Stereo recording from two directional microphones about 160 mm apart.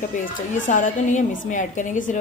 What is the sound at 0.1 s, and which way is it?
A woman's voice, 55° left (ahead or behind).